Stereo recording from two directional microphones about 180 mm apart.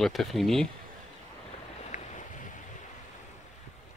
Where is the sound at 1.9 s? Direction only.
45° left (ahead or behind).